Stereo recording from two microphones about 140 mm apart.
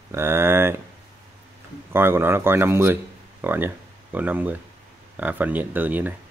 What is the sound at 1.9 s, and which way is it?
Speech, 15° right (ahead or behind).